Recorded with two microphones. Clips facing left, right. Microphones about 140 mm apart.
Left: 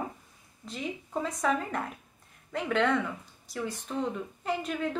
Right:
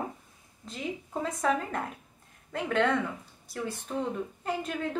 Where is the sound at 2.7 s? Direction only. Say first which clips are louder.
Even; 45° right (ahead or behind).